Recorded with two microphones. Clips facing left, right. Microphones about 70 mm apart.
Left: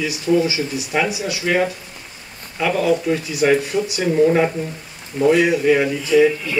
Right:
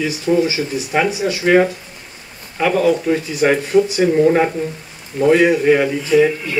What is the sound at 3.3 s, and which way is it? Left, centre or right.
Speech, right.